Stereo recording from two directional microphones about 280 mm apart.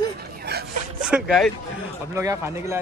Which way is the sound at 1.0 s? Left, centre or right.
Centre.